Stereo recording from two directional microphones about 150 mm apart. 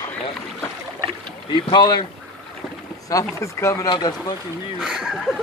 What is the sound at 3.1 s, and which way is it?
Speech, 20° left (ahead or behind).